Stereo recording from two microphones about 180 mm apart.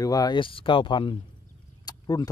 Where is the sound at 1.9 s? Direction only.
20° left (ahead or behind).